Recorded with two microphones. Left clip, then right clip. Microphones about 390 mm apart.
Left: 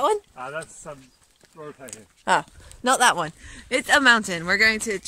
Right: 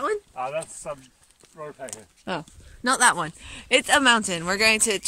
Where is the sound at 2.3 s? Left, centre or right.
Centre.